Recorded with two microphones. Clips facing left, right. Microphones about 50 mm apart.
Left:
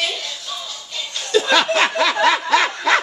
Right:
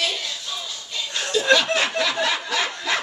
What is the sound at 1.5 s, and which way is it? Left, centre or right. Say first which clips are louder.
Snicker: left 1 dB; left.